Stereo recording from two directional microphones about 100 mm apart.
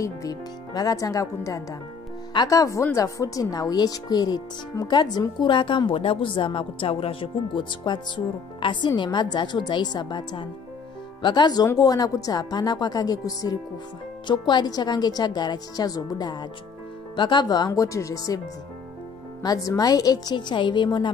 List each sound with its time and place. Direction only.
0.0 s a woman's voice: 35° left (ahead or behind)
19.4 s a woman's voice: 40° left (ahead or behind)